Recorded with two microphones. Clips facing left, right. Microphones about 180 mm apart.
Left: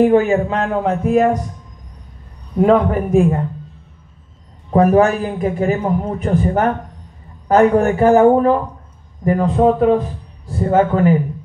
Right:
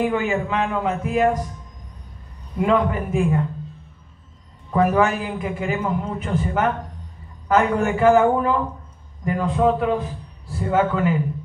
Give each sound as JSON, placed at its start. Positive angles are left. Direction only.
{"t": 0.0, "sound": "a man's voice", "side_deg": 40}
{"t": 2.5, "sound": "a man's voice", "side_deg": 45}
{"t": 4.6, "sound": "a man's voice", "side_deg": 40}